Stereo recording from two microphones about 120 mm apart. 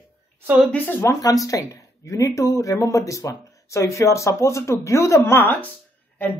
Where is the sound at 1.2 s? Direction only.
30° left (ahead or behind).